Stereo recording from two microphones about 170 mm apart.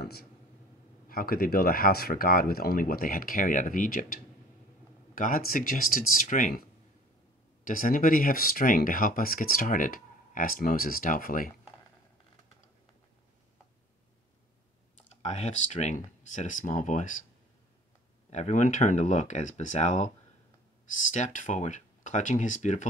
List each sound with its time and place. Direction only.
0.0 s speech: 65° left (ahead or behind)
7.6 s speech: 55° left (ahead or behind)
15.2 s speech: 40° left (ahead or behind)
18.3 s speech: 45° left (ahead or behind)